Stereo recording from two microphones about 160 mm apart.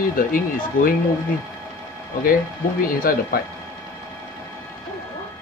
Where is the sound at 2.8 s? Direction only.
60° left (ahead or behind).